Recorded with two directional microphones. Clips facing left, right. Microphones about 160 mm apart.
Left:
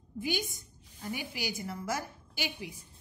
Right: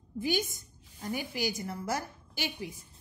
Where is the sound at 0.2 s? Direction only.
45° right (ahead or behind).